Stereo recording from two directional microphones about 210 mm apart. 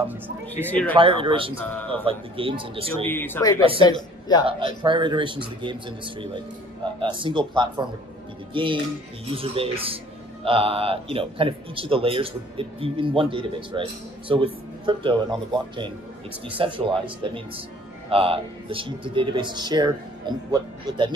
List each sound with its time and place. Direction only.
0.5 s speech: 10° left (ahead or behind)
0.9 s a man's voice: 25° right (ahead or behind)
3.1 s a man's voice: 10° left (ahead or behind)
4.5 s a man's voice: 25° right (ahead or behind)